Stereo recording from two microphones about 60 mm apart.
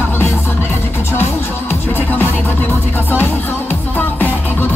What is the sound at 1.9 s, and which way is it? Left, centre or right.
Music, left.